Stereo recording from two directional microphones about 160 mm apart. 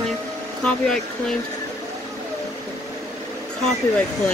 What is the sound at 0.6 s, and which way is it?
Speech, 5° left (ahead or behind).